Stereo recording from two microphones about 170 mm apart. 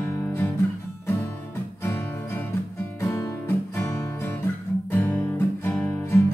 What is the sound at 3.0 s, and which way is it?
Music, 20° left (ahead or behind).